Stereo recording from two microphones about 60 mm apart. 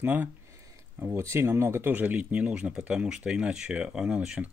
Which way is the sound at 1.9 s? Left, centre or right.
Right.